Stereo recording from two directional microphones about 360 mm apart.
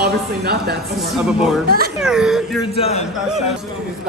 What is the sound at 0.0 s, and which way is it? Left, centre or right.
Speech, right.